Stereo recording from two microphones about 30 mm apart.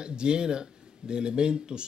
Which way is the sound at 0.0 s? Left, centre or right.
Right.